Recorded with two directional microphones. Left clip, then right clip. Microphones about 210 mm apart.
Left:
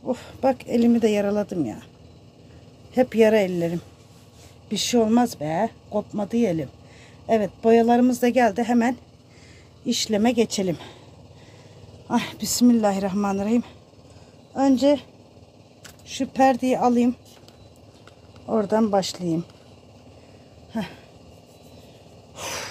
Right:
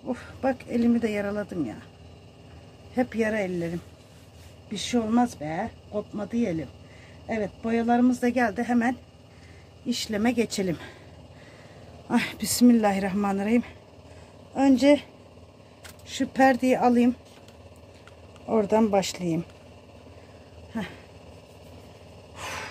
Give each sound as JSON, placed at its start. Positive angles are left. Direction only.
{"t": 0.0, "sound": "speech", "side_deg": 35}
{"t": 2.9, "sound": "speech", "side_deg": 35}
{"t": 12.1, "sound": "speech", "side_deg": 10}
{"t": 16.1, "sound": "speech", "side_deg": 10}
{"t": 18.5, "sound": "speech", "side_deg": 5}
{"t": 22.3, "sound": "gasp", "side_deg": 50}